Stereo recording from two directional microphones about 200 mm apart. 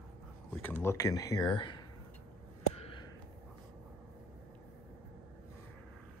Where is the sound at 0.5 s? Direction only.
10° left (ahead or behind).